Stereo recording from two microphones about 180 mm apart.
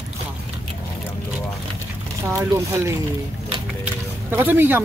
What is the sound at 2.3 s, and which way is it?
Speech, 15° right (ahead or behind).